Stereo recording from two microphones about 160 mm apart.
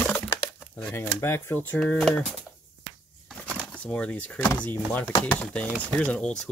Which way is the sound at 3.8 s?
10° left (ahead or behind).